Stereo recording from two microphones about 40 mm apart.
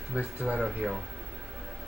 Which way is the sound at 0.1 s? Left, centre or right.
Right.